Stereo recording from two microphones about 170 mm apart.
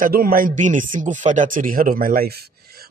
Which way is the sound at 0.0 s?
60° right (ahead or behind).